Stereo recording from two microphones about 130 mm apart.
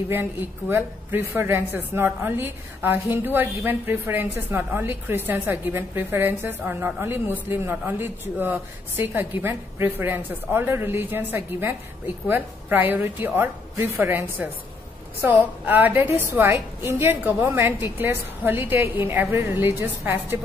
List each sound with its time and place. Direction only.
0.1 s a woman's voice: 20° right (ahead or behind)
15.6 s a woman's voice: 15° right (ahead or behind)